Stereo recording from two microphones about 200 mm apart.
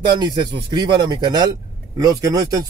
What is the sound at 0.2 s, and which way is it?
Speech, 20° right (ahead or behind).